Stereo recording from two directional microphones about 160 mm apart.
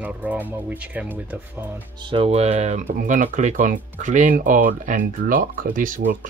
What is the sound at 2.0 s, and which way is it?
Speech, 35° right (ahead or behind).